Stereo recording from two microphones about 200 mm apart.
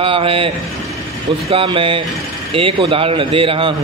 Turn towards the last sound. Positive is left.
turn(degrees=-25)  # may be behind; listen again after turning